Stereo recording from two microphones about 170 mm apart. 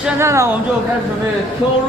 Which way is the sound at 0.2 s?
15° right (ahead or behind).